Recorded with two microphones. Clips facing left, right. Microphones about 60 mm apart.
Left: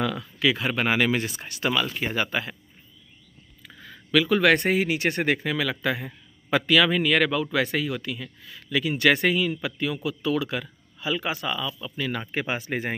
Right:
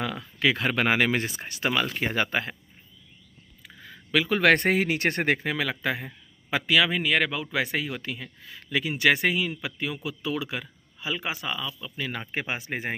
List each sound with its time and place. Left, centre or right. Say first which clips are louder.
0.0 s a sound: left 4 dB; right
0.4 s speech: even; right
1.4 s speech: left 1 dB; right
2.0 s speech: even; right
4.1 s speech: left 3 dB; right
4.4 s speech: even; right
6.5 s speech: left 3 dB; centre
8.9 s speech: left 2 dB; centre